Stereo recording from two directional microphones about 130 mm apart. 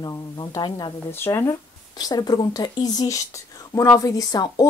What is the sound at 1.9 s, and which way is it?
Speech, 30° left (ahead or behind).